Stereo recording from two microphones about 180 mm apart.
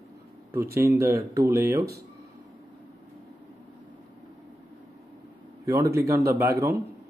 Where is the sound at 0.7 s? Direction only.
15° right (ahead or behind).